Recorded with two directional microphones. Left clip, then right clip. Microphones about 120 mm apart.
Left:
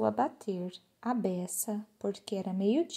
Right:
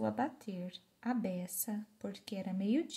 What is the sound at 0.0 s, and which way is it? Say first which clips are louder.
A woman's voice: left 7 dB; 40° left (ahead or behind).